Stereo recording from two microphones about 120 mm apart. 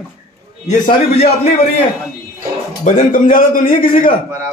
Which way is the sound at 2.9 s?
90° left.